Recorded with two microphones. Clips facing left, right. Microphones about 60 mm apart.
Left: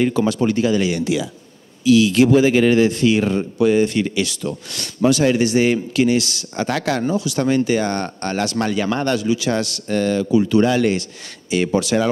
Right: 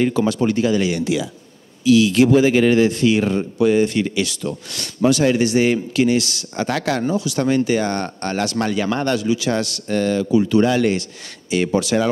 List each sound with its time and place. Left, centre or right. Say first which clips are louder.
0.0 s speech: even; centre